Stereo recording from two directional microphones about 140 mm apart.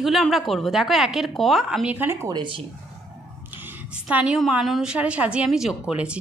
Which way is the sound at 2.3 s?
35° right (ahead or behind).